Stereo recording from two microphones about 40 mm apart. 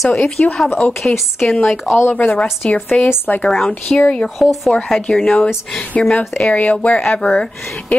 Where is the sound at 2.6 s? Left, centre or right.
Left.